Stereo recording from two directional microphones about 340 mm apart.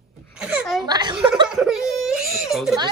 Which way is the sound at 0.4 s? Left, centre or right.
Centre.